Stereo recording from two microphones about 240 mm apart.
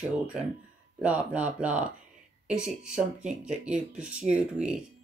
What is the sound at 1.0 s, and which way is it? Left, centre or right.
Speech, centre.